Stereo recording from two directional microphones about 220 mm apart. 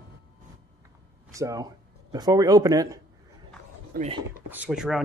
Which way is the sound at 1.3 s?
15° right (ahead or behind).